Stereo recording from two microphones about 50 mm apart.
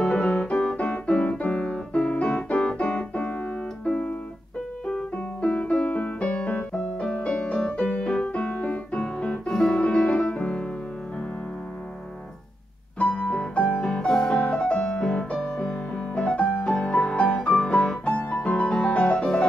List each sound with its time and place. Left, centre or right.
0.0 s music: centre
1.2 s keyboard: left
4.8 s music: centre
7.2 s piano: left
9.5 s music: centre
13.1 s piano: left
13.7 s music: centre
18.1 s music: left